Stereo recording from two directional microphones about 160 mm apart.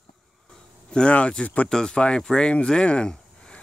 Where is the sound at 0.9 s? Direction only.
5° left (ahead or behind).